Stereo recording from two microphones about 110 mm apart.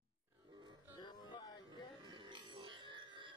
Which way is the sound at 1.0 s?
40° left (ahead or behind).